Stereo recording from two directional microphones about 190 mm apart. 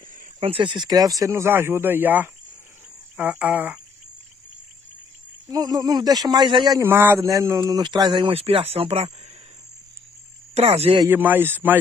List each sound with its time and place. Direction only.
0.4 s speech: 30° right (ahead or behind); by 3.8 s 5° right (ahead or behind)
5.5 s speech: 20° right (ahead or behind)
10.5 s speech: 35° right (ahead or behind)
11.1 s speech: 10° right (ahead or behind)